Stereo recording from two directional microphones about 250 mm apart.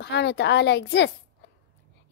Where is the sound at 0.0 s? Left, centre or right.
Left.